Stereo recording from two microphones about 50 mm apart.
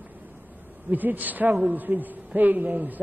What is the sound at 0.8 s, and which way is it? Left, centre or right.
A man's voice, right.